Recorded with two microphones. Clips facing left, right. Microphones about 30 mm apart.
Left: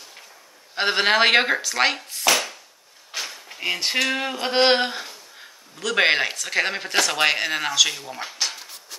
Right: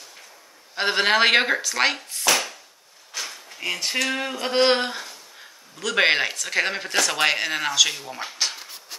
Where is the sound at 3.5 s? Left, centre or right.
Centre.